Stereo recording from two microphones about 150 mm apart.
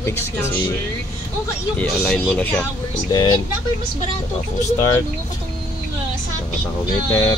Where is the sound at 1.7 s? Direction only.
5° left (ahead or behind).